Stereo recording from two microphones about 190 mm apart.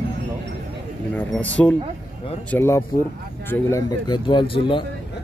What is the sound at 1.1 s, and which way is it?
Speech, 5° left (ahead or behind).